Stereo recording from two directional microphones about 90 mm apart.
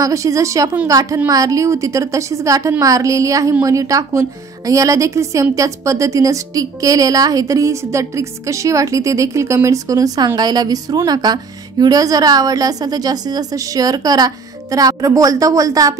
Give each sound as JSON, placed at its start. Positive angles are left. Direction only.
{"t": 0.0, "sound": "a woman's voice", "side_deg": -35}